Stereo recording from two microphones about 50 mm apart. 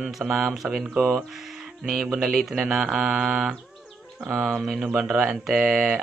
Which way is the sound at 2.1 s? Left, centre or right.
Centre.